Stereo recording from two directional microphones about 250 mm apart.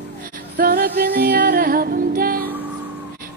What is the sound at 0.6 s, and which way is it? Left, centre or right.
Music, right.